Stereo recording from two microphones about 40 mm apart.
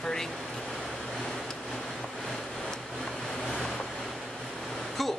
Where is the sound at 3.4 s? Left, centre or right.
Centre.